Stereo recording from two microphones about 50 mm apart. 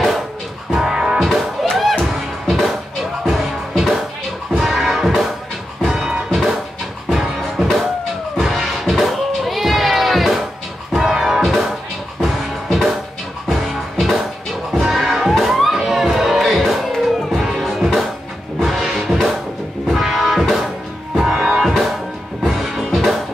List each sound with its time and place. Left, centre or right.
0.7 s music: centre
1.2 s music: centre